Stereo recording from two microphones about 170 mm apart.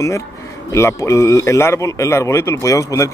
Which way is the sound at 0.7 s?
15° left (ahead or behind).